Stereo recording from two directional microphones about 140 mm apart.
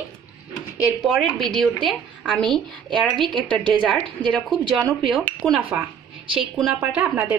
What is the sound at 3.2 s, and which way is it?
Speech, 35° right (ahead or behind).